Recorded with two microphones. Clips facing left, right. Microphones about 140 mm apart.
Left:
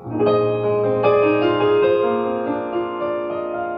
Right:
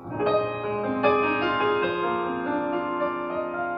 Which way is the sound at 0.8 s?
15° left (ahead or behind).